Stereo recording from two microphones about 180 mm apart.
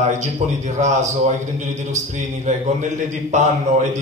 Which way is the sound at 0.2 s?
40° right (ahead or behind).